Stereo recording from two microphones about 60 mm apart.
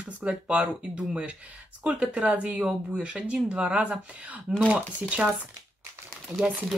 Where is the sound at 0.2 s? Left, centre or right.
Centre.